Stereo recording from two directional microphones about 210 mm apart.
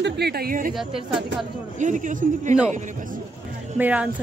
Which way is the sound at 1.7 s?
35° right (ahead or behind).